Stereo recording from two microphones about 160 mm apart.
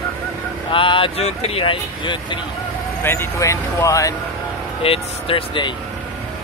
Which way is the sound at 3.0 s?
15° left (ahead or behind).